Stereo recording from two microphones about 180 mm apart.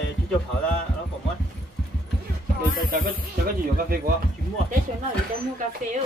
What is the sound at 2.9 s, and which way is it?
Speech, 50° right (ahead or behind).